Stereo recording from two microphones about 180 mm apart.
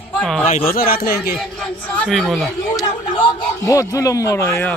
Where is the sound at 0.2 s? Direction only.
5° left (ahead or behind).